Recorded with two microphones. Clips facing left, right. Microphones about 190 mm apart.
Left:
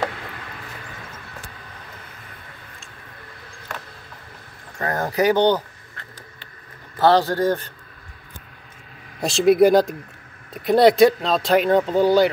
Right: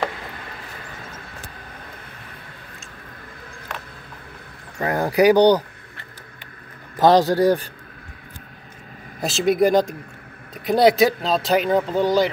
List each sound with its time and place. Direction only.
4.7 s speech: 10° right (ahead or behind)
7.0 s speech: 15° right (ahead or behind)
9.2 s speech: centre (ahead or behind)